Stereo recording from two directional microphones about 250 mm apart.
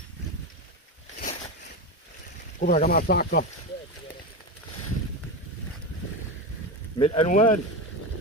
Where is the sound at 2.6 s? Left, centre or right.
Left.